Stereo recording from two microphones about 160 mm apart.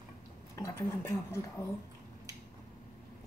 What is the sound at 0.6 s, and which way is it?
A woman's voice, 20° left (ahead or behind).